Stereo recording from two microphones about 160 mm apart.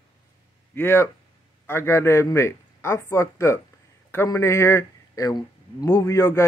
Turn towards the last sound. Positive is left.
turn(degrees=20)  # may be behind; listen again after turning